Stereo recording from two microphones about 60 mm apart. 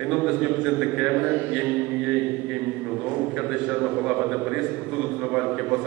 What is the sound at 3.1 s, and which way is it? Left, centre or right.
A man's voice, centre.